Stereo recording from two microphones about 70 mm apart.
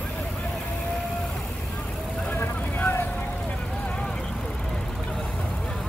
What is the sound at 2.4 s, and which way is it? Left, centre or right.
Vehicle, left.